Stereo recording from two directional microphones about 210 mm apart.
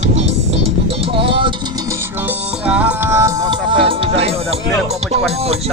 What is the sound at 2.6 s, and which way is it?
Music, 5° right (ahead or behind).